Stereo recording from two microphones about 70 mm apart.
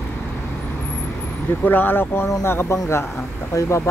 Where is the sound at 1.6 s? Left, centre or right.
Left.